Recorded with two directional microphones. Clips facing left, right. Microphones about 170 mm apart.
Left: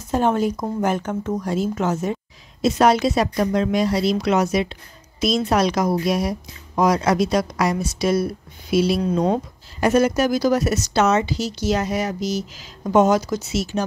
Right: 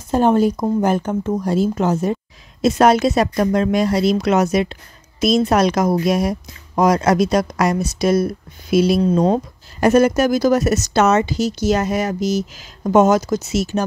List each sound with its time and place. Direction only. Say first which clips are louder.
0.1 s speech: right 5 dB; 35° right (ahead or behind)
2.6 s speech: right 3 dB; 50° right (ahead or behind)